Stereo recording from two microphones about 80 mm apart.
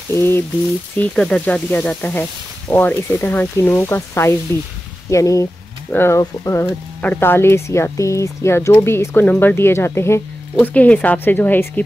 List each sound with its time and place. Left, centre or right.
0.1 s speech: left
0.9 s speech: centre
5.1 s speech: left
5.9 s speech: left
6.1 s speech: left
7.0 s speech: left
9.2 s speech: centre
10.6 s speech: centre